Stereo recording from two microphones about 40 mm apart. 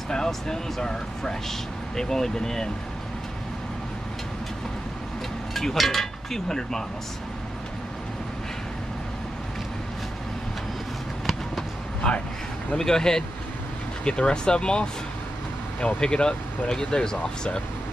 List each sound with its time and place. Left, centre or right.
0.1 s speech: centre
5.5 s speech: centre
12.0 s speech: centre